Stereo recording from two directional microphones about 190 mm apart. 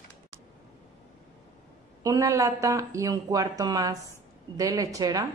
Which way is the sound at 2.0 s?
15° right (ahead or behind).